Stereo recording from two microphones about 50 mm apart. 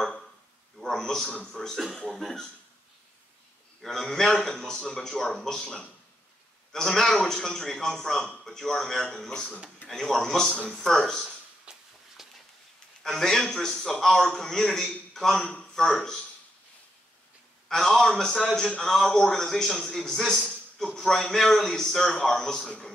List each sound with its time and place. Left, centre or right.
0.7 s a sound: centre
1.8 s a man's voice: centre
3.8 s a man's voice: centre
11.7 s walk: centre
12.2 s a sound: centre
13.0 s a man's voice: centre
17.6 s a man's voice: centre